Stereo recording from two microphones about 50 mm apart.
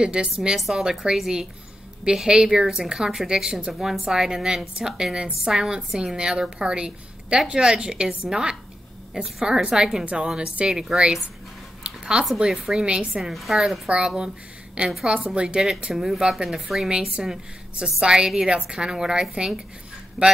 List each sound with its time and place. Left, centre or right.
0.0 s a woman's voice: centre
0.6 s a woman's voice: centre
11.8 s a sound: centre
12.4 s a woman's voice: centre
13.3 s a woman's voice: centre
13.8 s a woman's voice: centre
20.2 s a woman's voice: centre